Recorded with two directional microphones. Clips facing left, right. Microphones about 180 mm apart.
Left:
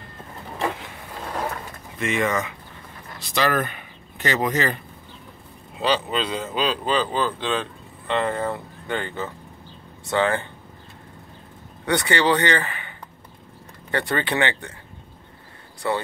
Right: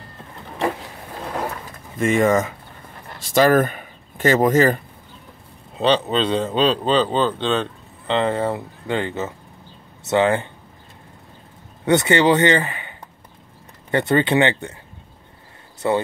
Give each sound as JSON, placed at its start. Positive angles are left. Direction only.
{"t": 2.0, "sound": "speech", "side_deg": -45}
{"t": 5.8, "sound": "speech", "side_deg": -25}
{"t": 11.8, "sound": "speech", "side_deg": -20}
{"t": 13.9, "sound": "speech", "side_deg": -20}
{"t": 15.8, "sound": "speech", "side_deg": -20}